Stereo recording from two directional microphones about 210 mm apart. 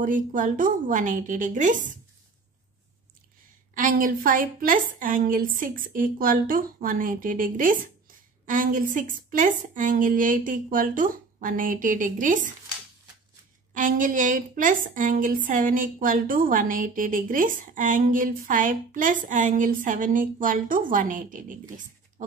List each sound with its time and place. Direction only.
0.0 s a woman's voice: 40° right (ahead or behind)
3.7 s a woman's voice: 40° right (ahead or behind)
13.7 s a woman's voice: 40° right (ahead or behind)